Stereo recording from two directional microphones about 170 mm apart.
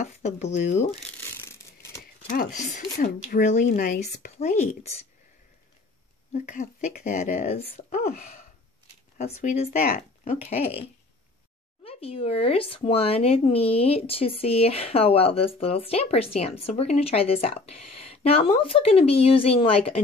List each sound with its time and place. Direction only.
0.0 s speech: 45° left (ahead or behind)
0.9 s a sound: 10° left (ahead or behind)
2.2 s speech: 50° left (ahead or behind)
4.1 s speech: 40° left (ahead or behind)
6.3 s speech: 45° left (ahead or behind)
9.2 s speech: 45° left (ahead or behind)
10.2 s speech: 40° left (ahead or behind)
11.8 s speech: 35° left (ahead or behind)